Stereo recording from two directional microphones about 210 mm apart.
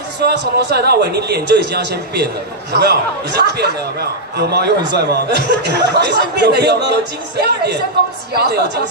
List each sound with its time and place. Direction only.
0.2 s a man's voice: 55° right (ahead or behind)